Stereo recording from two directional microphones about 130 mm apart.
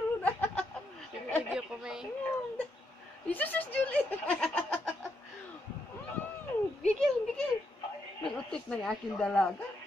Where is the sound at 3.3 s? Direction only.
15° left (ahead or behind).